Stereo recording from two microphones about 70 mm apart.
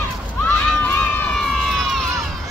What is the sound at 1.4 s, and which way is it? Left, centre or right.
Crowd, centre.